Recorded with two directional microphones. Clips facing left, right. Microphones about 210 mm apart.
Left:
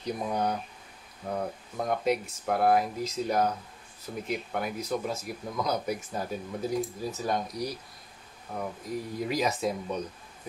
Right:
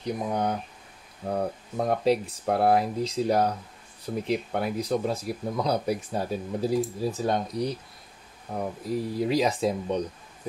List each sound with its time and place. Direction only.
0.0 s speech: 20° right (ahead or behind)
1.3 s speech: 30° right (ahead or behind)
8.8 s speech: 30° right (ahead or behind)